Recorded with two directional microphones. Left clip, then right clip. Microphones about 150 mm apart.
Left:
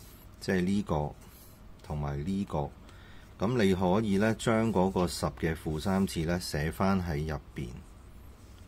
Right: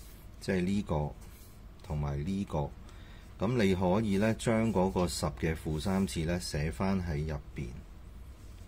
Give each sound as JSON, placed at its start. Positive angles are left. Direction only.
{"t": 0.4, "sound": "speech", "side_deg": 20}